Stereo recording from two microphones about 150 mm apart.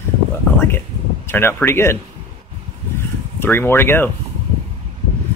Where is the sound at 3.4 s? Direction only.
15° left (ahead or behind).